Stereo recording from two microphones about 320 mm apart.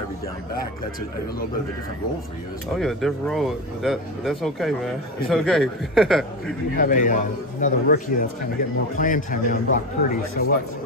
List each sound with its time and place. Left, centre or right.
2.7 s speech: centre
6.8 s speech: left